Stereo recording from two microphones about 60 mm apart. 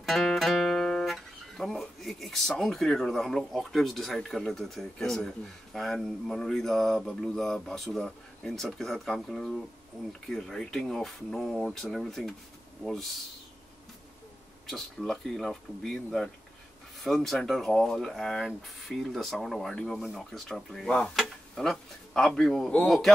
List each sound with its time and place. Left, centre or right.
0.0 s guitar: centre
1.1 s a sound: centre
2.6 s speech: centre
14.7 s speech: centre
19.7 s speech: centre